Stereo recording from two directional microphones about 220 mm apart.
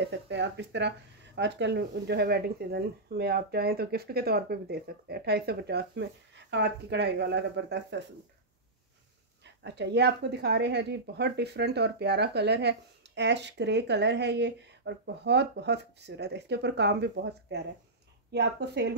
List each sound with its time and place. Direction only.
0.0 s speech: 50° right (ahead or behind)
9.4 s speech: 50° right (ahead or behind)